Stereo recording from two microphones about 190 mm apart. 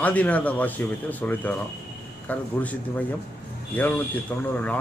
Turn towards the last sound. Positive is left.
turn(degrees=10)  # may be behind; listen again after turning